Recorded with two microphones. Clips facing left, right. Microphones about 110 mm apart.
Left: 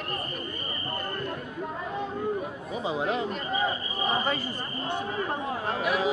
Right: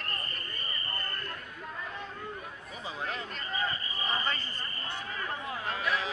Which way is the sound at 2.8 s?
20° left (ahead or behind).